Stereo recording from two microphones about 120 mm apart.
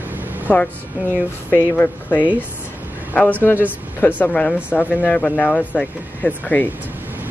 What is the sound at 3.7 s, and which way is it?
Speech, 15° left (ahead or behind).